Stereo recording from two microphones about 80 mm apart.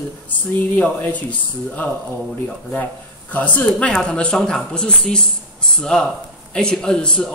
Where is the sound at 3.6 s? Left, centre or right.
Centre.